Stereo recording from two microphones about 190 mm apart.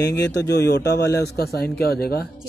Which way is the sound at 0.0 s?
60° left (ahead or behind).